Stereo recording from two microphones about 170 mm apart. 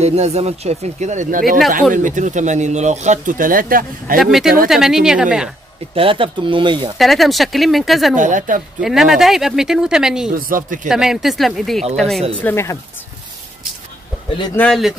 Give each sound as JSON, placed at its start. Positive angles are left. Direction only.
{"t": 0.0, "sound": "speech", "side_deg": -40}
{"t": 4.2, "sound": "speech", "side_deg": 0}
{"t": 5.9, "sound": "speech", "side_deg": -30}
{"t": 7.0, "sound": "speech", "side_deg": 0}
{"t": 8.2, "sound": "speech", "side_deg": -50}
{"t": 8.8, "sound": "speech", "side_deg": 0}
{"t": 10.3, "sound": "speech", "side_deg": -55}
{"t": 10.9, "sound": "speech", "side_deg": -5}
{"t": 12.4, "sound": "speech", "side_deg": 15}
{"t": 14.5, "sound": "speech", "side_deg": 10}